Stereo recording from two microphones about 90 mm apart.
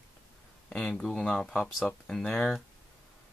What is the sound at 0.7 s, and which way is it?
Speech, 5° left (ahead or behind).